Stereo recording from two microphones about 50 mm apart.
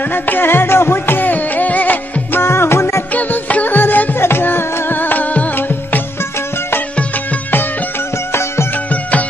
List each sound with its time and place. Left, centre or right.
0.1 s music: left
2.4 s music: left
3.2 s music: left
8.3 s music: left